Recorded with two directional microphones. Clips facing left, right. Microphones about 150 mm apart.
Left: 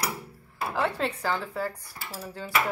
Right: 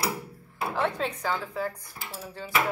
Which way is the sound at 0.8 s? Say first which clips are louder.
Left 1 dB; 5° left (ahead or behind).